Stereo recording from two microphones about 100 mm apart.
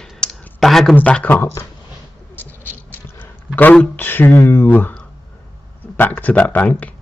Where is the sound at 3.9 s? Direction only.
20° left (ahead or behind).